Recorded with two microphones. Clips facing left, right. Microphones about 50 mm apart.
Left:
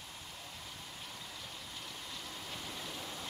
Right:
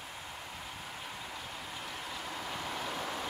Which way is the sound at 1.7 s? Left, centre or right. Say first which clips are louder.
Right 6 dB; right.